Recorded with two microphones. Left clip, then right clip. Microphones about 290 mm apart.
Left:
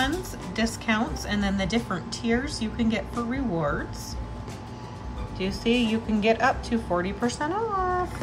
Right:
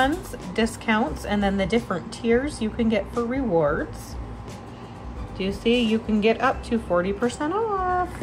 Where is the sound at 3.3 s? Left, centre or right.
Right.